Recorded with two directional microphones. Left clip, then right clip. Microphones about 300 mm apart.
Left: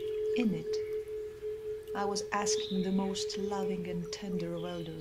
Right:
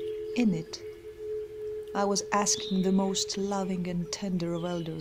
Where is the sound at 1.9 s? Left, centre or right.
Right.